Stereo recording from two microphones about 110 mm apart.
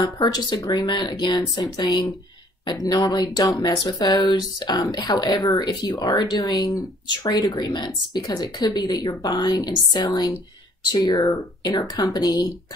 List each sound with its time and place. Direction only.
0.0 s speech: 40° left (ahead or behind)